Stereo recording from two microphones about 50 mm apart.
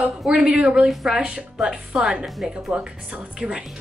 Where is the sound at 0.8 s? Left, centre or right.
Centre.